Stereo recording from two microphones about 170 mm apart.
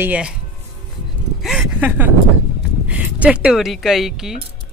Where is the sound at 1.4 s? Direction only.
5° right (ahead or behind).